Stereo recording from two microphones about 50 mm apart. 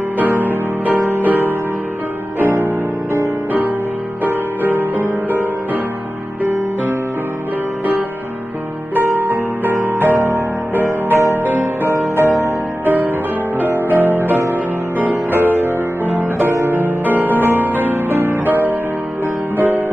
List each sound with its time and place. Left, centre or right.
0.2 s music: right
2.5 s music: right
4.2 s music: right
9.2 s music: right
12.2 s music: right
13.6 s music: right
18.1 s music: right
18.4 s music: right